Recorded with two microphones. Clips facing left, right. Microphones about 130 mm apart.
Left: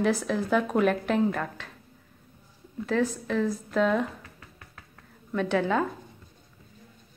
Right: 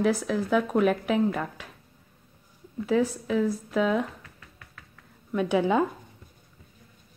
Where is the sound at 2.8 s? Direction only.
5° right (ahead or behind).